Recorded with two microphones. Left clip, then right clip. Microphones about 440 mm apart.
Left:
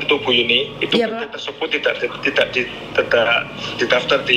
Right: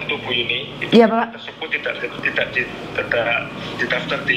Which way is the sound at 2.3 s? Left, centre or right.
Left.